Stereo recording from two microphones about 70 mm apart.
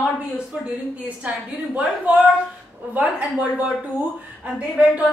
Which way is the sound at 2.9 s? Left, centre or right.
Right.